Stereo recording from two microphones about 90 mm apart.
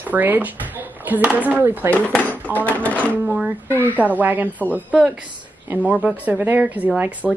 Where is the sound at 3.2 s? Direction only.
10° right (ahead or behind).